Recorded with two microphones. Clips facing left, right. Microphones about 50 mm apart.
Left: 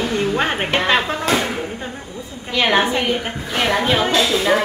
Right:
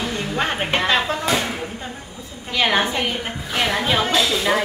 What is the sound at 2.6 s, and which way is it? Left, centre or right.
A woman's voice, centre.